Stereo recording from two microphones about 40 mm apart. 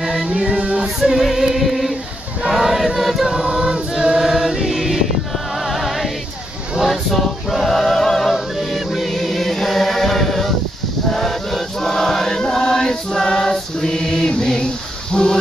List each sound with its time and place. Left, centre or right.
0.0 s music: centre
2.4 s choir: centre
3.4 s choir: centre
5.7 s music: centre
6.9 s choir: centre
11.1 s chant: centre
15.1 s a sound: centre